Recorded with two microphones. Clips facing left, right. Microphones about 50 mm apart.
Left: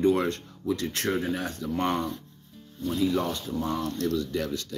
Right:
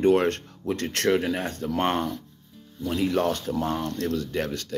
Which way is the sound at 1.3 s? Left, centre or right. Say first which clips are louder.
Right 3 dB; right.